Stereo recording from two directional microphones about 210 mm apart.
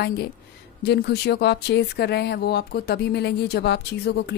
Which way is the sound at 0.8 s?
50° left (ahead or behind).